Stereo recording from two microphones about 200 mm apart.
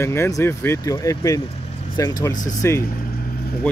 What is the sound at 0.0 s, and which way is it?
Speech, 15° left (ahead or behind).